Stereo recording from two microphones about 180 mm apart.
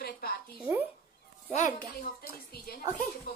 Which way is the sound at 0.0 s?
60° left (ahead or behind).